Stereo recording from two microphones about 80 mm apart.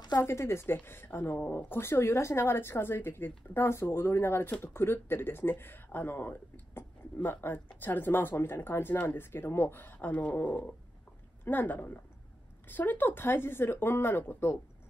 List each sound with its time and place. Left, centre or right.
0.2 s a woman's voice: left